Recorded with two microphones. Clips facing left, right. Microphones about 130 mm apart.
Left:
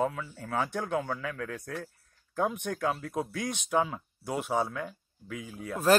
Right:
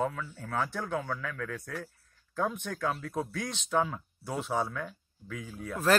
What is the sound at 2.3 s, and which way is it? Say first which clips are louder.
Speech: left 2 dB; 15° left (ahead or behind).